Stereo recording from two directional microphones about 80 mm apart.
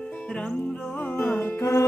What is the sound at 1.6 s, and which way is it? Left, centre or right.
Music, left.